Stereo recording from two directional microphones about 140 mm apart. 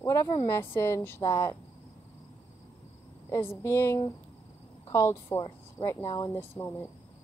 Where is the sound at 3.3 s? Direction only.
20° left (ahead or behind).